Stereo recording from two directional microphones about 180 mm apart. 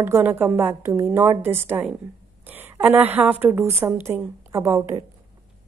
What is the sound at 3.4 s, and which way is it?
A woman's voice, 10° right (ahead or behind).